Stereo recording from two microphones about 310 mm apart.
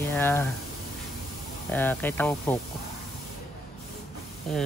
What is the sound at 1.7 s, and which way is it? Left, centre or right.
Speech, centre.